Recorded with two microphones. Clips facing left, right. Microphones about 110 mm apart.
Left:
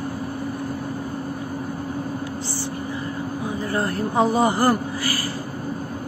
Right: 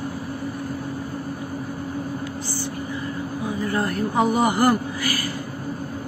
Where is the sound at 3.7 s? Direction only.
30° left (ahead or behind).